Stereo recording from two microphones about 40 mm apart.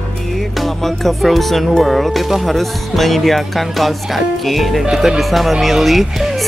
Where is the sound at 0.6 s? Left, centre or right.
Centre.